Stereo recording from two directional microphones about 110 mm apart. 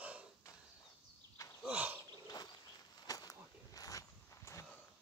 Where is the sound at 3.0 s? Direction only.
35° left (ahead or behind).